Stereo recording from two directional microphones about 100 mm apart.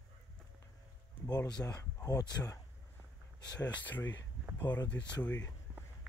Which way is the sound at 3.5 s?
15° left (ahead or behind).